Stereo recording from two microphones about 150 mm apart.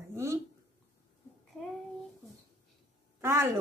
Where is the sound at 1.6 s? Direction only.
Centre (ahead or behind).